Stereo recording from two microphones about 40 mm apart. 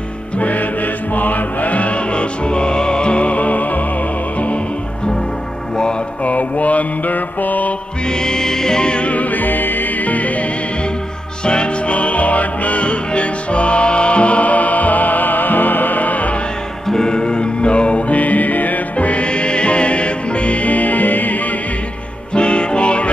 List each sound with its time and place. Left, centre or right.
0.4 s music: left
6.2 s mantra: left
8.1 s music: centre
9.1 s music: left
11.4 s music: left
16.8 s music: centre; by 21.5 s left
22.3 s music: left